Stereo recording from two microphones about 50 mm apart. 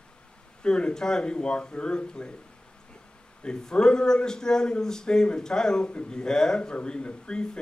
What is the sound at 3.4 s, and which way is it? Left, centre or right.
A man's voice, centre.